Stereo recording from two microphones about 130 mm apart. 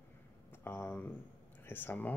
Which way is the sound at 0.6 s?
15° left (ahead or behind).